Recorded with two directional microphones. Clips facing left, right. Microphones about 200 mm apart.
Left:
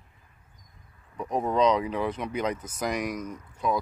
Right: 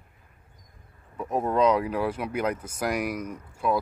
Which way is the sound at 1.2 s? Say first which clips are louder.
Right 1 dB; 5° right (ahead or behind).